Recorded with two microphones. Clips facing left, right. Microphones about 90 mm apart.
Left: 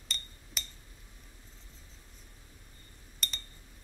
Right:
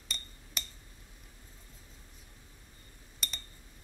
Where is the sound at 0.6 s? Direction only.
Centre (ahead or behind).